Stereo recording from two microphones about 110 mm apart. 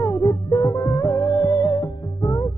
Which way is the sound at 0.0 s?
35° left (ahead or behind).